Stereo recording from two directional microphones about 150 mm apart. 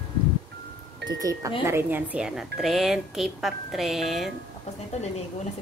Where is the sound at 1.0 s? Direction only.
25° right (ahead or behind); by 4.3 s centre (ahead or behind).